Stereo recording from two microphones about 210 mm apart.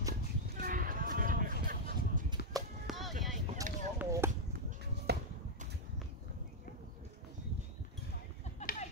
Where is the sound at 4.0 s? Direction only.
10° right (ahead or behind).